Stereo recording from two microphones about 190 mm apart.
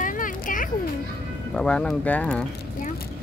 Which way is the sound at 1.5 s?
5° left (ahead or behind).